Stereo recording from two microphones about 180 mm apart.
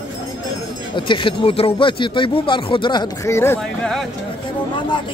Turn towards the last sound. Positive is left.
turn(degrees=15)  # may be behind; listen again after turning